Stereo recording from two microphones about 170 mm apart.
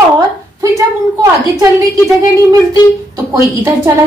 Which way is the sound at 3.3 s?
20° right (ahead or behind).